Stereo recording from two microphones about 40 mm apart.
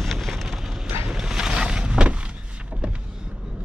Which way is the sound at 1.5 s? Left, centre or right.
Right.